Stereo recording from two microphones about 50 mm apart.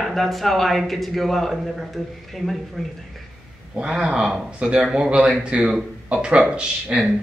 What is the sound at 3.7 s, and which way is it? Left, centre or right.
Speech, right.